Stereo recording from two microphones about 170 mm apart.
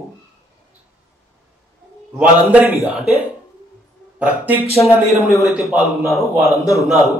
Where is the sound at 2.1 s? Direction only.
10° right (ahead or behind).